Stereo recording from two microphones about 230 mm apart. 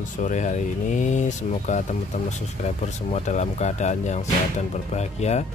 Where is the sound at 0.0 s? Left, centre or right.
Left.